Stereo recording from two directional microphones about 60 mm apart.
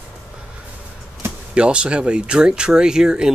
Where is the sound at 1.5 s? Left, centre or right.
Centre.